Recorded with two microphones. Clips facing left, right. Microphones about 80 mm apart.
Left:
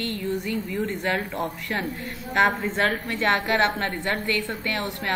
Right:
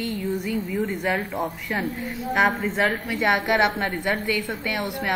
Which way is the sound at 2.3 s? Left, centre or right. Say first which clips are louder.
Even; centre.